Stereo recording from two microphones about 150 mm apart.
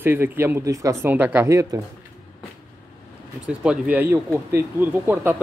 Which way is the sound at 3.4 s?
10° right (ahead or behind).